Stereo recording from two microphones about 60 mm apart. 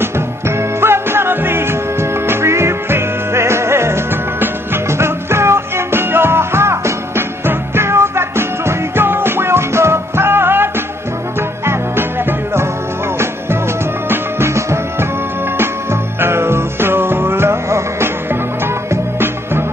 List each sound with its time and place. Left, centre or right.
0.6 s music: right
14.0 s music: right
14.5 s music: right
15.5 s music: right